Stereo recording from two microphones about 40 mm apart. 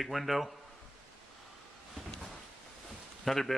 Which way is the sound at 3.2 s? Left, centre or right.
Centre.